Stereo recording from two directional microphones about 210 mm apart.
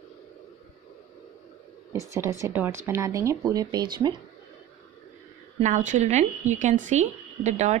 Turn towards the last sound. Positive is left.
turn(degrees=-35)  # may be behind; listen again after turning